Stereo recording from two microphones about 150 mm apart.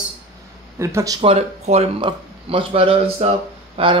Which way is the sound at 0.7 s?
20° right (ahead or behind).